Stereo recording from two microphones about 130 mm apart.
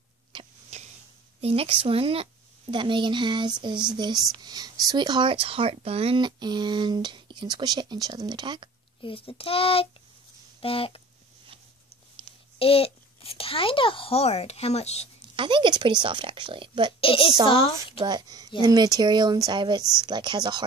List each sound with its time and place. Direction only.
0.3 s a sound: 35° right (ahead or behind)
1.4 s speech: 50° right (ahead or behind)
9.0 s a child's voice: 45° left (ahead or behind)
12.5 s a child's voice: 45° left (ahead or behind)
15.3 s speech: 40° right (ahead or behind)
17.0 s a child's voice: 45° left (ahead or behind)
17.9 s speech: 30° right (ahead or behind)